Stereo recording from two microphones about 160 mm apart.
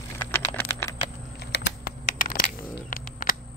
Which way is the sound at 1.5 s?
70° left (ahead or behind).